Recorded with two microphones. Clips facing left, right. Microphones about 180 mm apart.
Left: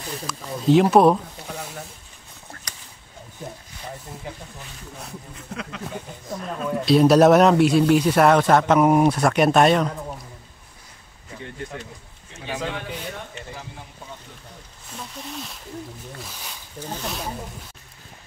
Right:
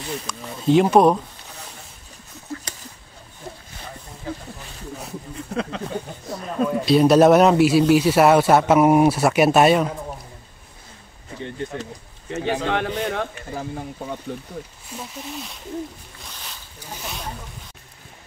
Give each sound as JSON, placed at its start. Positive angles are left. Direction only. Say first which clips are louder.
{"t": 0.3, "sound": "speech", "louder": "left 1 dB", "side_deg": 0}
{"t": 6.4, "sound": "speech", "louder": "right 3 dB", "side_deg": 0}
{"t": 11.8, "sound": "speech", "louder": "right 6 dB", "side_deg": -70}
{"t": 15.0, "sound": "speech", "louder": "right 2 dB", "side_deg": -5}